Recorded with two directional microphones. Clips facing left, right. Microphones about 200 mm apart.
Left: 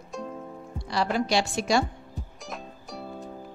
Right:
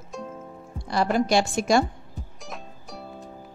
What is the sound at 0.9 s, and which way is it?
Speech, 45° right (ahead or behind).